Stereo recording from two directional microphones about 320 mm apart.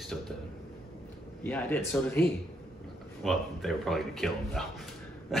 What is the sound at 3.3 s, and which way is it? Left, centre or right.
Speech, centre.